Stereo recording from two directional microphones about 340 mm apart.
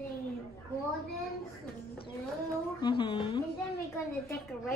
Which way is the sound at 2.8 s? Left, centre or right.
Centre.